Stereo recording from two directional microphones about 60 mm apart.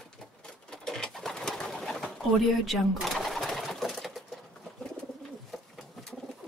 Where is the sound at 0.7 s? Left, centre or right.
Centre.